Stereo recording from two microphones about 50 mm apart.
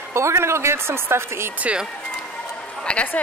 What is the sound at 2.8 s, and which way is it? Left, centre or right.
Speech, left.